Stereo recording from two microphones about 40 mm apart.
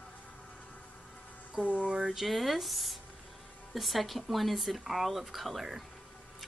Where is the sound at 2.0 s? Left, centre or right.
Centre.